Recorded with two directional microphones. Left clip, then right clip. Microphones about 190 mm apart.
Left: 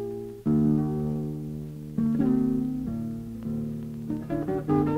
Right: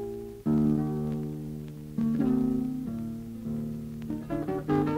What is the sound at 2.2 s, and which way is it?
Music, 25° left (ahead or behind).